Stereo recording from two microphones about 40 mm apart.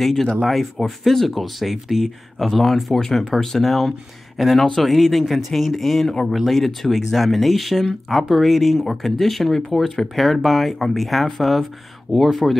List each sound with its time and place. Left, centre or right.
0.0 s speech: centre